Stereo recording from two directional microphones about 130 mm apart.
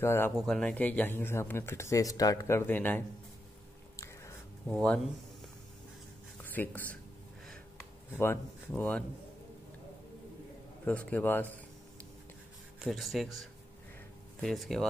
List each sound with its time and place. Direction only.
0.0 s speech: 20° left (ahead or behind)
0.4 s speech: 5° left (ahead or behind)
3.9 s a sound: 20° left (ahead or behind)
4.6 s speech: 5° left (ahead or behind)
6.4 s speech: 15° left (ahead or behind)
8.1 s speech: 15° left (ahead or behind)
10.9 s speech: 10° left (ahead or behind)
12.8 s speech: centre (ahead or behind)